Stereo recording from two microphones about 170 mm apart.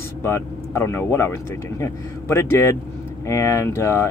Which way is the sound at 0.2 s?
15° left (ahead or behind).